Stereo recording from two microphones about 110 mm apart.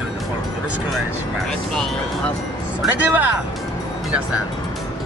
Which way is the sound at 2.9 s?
15° right (ahead or behind).